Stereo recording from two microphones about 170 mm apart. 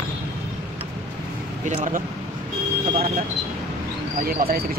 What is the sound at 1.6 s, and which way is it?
Speech, 45° right (ahead or behind).